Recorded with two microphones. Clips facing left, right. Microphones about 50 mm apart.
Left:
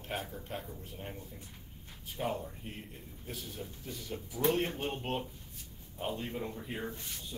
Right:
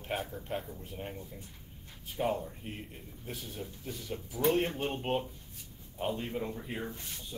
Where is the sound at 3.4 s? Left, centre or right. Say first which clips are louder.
Right 1 dB; right.